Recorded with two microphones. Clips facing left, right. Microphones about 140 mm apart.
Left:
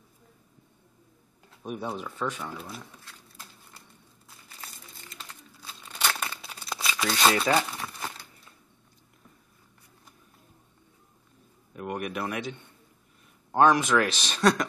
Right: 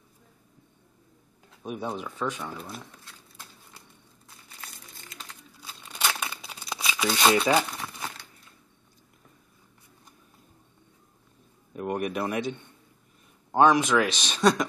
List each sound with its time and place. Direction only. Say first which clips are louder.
1.6 s speech: right 1 dB; centre (ahead or behind)
5.1 s a sound: right 1 dB; centre (ahead or behind)
6.0 s crumpling: even; centre (ahead or behind)
11.7 s speech: right 4 dB; 30° right (ahead or behind)
13.5 s speech: right 1 dB; centre (ahead or behind)